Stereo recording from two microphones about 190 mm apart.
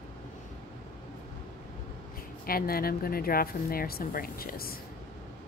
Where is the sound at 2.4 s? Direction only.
50° left (ahead or behind).